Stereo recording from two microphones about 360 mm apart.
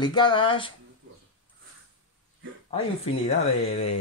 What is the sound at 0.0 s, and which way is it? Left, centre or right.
Speech, centre.